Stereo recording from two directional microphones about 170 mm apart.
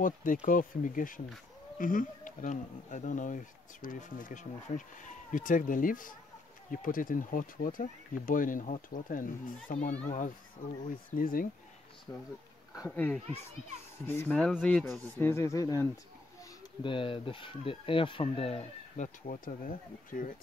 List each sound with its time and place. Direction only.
0.0 s speech: 50° left (ahead or behind)
12.1 s speech: 20° left (ahead or behind); by 15.0 s 5° left (ahead or behind)
15.1 s speech: 15° left (ahead or behind)
16.8 s speech: 30° left (ahead or behind)
19.2 s speech: 55° left (ahead or behind)